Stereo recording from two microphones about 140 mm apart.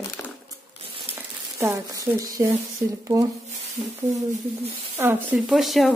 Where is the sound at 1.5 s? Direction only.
20° right (ahead or behind).